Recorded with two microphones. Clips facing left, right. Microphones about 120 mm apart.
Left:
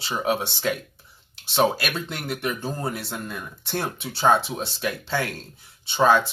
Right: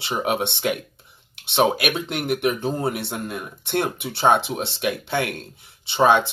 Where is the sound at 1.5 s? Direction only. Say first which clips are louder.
Right 2 dB; 20° right (ahead or behind).